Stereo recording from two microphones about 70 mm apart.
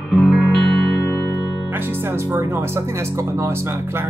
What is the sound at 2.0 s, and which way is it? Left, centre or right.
Speech, right.